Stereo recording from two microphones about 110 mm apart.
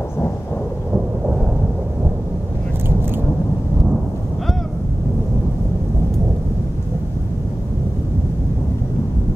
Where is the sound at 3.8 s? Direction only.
Centre (ahead or behind).